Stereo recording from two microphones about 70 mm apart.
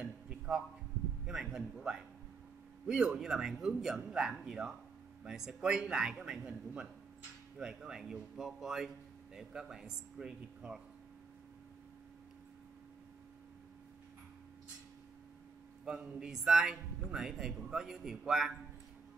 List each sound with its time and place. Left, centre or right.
0.0 s a sound: centre
1.2 s a man's voice: centre
6.4 s a man's voice: centre
7.5 s a man's voice: centre
15.9 s a man's voice: centre